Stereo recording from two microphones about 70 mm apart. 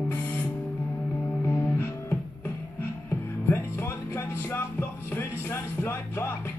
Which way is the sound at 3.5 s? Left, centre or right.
Left.